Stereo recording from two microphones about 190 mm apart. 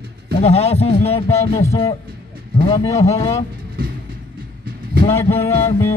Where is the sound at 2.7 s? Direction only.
20° left (ahead or behind).